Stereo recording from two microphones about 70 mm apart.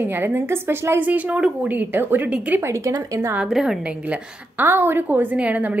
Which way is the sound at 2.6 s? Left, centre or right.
Right.